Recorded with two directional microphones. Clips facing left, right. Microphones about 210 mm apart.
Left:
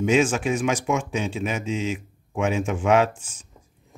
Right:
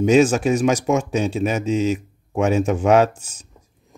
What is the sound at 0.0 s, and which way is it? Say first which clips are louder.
Speech: right 6 dB; 40° right (ahead or behind).